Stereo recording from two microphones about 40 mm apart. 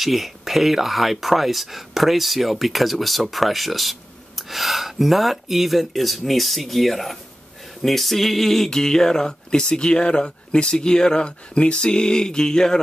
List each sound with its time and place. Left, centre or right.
0.0 s speech: centre